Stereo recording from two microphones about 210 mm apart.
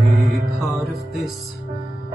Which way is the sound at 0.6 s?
Centre (ahead or behind).